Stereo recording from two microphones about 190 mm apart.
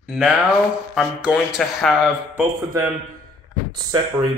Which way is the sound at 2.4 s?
10° right (ahead or behind).